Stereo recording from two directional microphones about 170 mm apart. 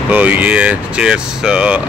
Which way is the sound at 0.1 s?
10° right (ahead or behind).